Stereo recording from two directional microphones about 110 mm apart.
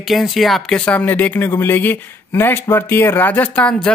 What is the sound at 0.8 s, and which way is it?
Speech, 10° left (ahead or behind).